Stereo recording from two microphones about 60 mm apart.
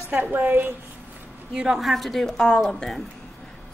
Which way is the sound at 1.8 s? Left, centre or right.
Centre.